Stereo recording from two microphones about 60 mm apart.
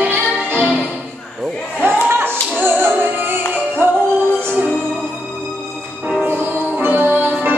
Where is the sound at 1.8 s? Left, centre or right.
Right.